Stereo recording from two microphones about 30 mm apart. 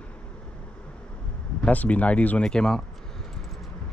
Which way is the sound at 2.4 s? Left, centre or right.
Left.